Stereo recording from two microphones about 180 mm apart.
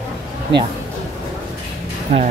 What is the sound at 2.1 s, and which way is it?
Speech, 35° right (ahead or behind).